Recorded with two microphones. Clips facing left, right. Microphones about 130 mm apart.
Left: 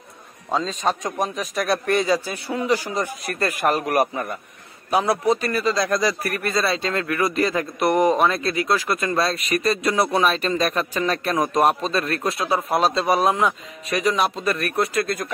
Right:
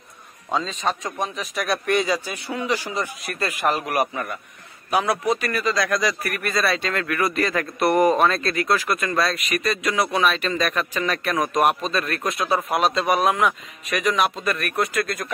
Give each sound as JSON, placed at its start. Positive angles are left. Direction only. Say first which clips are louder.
{"t": 0.8, "sound": "a man's voice", "louder": "left 2 dB", "side_deg": 15}
{"t": 1.3, "sound": "speech", "louder": "left 3 dB", "side_deg": 45}
{"t": 5.2, "sound": "speech", "louder": "left 2 dB", "side_deg": 30}